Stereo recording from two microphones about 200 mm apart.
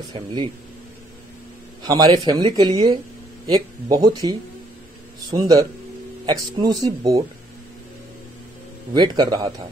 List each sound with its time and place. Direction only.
0.1 s speech: 20° right (ahead or behind)
1.9 s speech: 20° right (ahead or behind)
5.4 s speech: 15° right (ahead or behind)
8.9 s speech: 20° right (ahead or behind)